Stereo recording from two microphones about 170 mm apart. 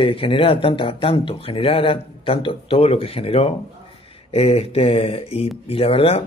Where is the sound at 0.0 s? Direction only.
30° left (ahead or behind).